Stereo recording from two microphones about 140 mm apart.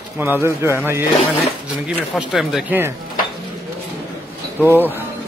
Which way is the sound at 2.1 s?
Centre (ahead or behind).